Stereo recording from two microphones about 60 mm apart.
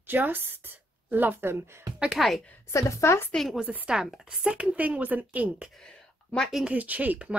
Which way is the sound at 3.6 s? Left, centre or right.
Centre.